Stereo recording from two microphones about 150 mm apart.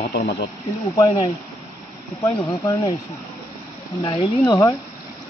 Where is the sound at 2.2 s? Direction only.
10° left (ahead or behind).